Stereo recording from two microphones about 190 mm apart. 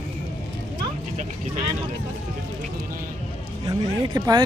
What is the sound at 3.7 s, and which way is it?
Speech, 20° right (ahead or behind).